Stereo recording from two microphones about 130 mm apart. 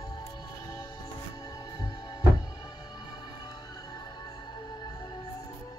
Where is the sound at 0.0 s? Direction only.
35° left (ahead or behind).